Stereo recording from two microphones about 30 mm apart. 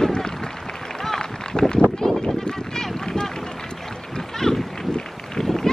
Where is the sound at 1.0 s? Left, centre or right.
Centre.